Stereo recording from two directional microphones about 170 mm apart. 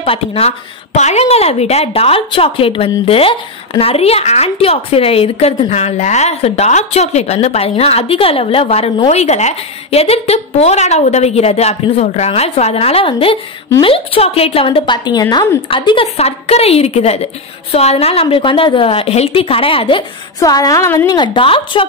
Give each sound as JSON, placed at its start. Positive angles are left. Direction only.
{"t": 0.0, "sound": "a woman's voice", "side_deg": 35}
{"t": 20.3, "sound": "a woman's voice", "side_deg": 20}
{"t": 21.2, "sound": "a woman's voice", "side_deg": 30}